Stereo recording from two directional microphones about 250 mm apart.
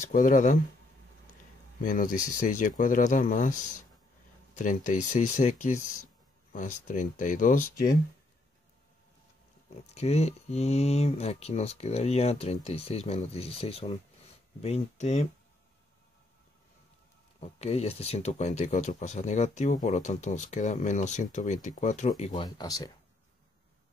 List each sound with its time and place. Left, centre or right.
0.0 s speech: left
1.8 s speech: left
4.6 s speech: left
9.9 s speech: left
17.4 s speech: left
22.6 s speech: centre